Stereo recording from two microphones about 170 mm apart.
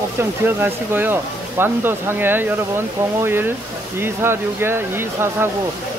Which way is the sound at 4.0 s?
15° right (ahead or behind).